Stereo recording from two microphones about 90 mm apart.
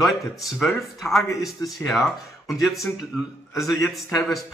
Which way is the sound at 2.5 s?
Centre (ahead or behind).